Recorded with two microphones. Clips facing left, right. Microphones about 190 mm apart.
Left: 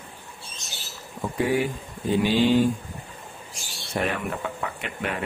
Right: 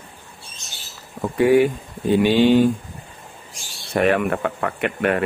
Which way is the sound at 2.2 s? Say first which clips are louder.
Right 5 dB; 65° right (ahead or behind).